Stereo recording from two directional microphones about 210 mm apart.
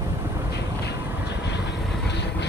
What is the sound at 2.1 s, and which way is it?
Train, 55° left (ahead or behind).